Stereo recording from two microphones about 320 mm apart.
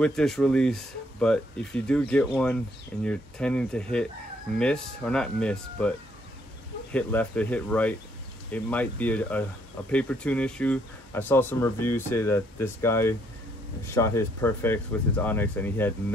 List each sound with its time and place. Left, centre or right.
0.0 s speech: centre